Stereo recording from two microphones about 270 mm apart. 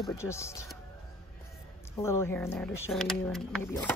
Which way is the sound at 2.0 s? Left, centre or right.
Centre.